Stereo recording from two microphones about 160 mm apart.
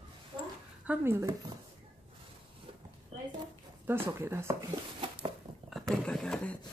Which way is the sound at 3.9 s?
15° right (ahead or behind).